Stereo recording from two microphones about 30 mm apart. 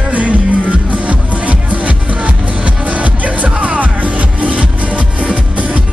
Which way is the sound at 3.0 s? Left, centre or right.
Right.